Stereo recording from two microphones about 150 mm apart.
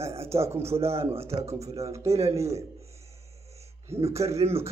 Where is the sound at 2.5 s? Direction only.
45° right (ahead or behind).